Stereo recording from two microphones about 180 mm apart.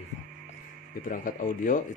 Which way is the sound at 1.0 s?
50° left (ahead or behind).